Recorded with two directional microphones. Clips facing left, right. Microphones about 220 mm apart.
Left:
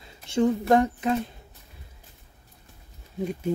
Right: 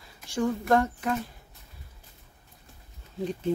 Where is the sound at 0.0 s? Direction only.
20° left (ahead or behind).